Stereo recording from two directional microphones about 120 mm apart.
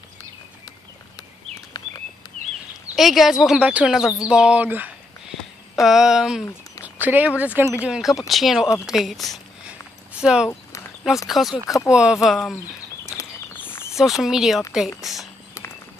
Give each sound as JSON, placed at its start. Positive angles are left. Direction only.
{"t": 3.0, "sound": "speech", "side_deg": 0}
{"t": 5.3, "sound": "a sound", "side_deg": 0}
{"t": 6.8, "sound": "speech", "side_deg": -15}
{"t": 11.6, "sound": "speech", "side_deg": 25}
{"t": 11.9, "sound": "speech", "side_deg": -10}
{"t": 13.0, "sound": "a sound", "side_deg": 20}
{"t": 13.9, "sound": "speech", "side_deg": -5}